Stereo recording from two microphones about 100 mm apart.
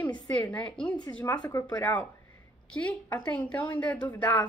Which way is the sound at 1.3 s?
35° left (ahead or behind).